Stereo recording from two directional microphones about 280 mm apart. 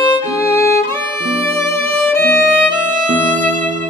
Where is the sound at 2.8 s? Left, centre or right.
Right.